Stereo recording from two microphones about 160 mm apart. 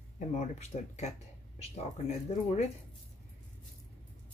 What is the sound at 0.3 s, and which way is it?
Speech, 45° left (ahead or behind).